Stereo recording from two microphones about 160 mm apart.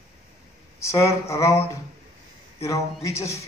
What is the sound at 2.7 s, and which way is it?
Speech, 20° left (ahead or behind).